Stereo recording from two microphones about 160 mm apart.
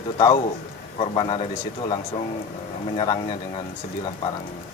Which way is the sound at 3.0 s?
35° left (ahead or behind).